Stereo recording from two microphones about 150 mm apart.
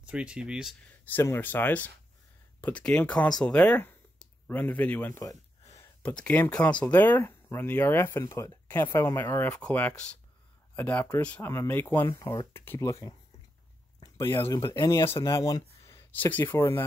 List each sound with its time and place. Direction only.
0.0 s speech: 5° right (ahead or behind)
1.1 s speech: 15° left (ahead or behind)